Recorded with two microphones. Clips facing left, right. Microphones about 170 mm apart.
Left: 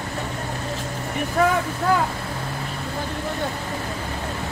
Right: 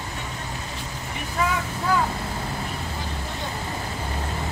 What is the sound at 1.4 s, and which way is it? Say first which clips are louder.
Speech: left 6 dB; 50° left (ahead or behind).